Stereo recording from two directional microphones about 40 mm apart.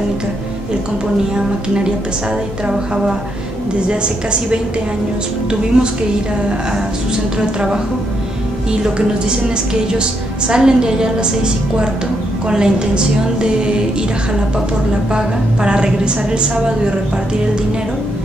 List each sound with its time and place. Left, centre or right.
2.6 s a woman's voice: centre
5.7 s a woman's voice: right
7.3 s a woman's voice: centre
8.8 s a woman's voice: right
10.5 s a woman's voice: centre
15.1 s a woman's voice: right